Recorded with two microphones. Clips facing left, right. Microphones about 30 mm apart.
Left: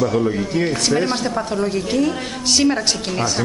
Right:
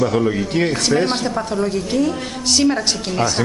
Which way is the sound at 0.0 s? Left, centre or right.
Right.